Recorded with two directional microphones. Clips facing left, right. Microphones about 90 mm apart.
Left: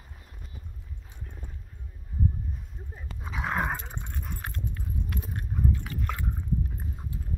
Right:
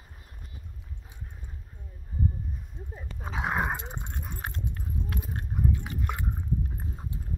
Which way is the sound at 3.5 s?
15° right (ahead or behind).